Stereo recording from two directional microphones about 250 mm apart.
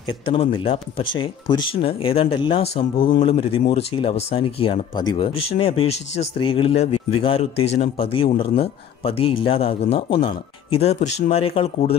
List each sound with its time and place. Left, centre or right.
0.2 s speech: left